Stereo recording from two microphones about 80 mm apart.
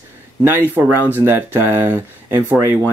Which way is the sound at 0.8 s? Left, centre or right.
Centre.